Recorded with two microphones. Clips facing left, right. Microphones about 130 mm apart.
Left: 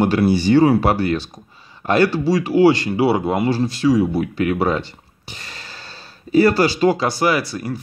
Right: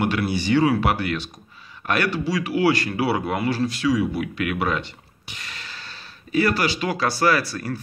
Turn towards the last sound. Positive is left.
turn(degrees=20)  # may be behind; listen again after turning